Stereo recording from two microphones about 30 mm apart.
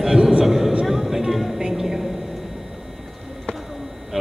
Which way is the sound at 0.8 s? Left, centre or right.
Centre.